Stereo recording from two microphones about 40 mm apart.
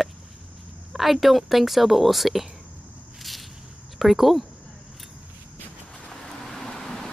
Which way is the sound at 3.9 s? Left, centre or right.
Centre.